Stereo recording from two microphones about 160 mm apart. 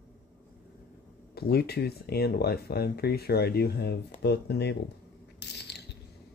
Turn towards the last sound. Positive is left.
turn(degrees=90)